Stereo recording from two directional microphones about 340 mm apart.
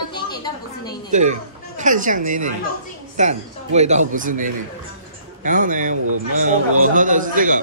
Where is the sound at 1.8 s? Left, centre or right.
Right.